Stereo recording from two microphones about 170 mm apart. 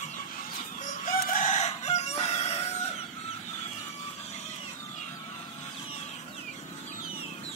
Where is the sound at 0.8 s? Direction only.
50° left (ahead or behind).